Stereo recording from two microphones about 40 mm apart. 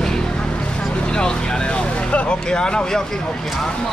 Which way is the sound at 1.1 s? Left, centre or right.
Left.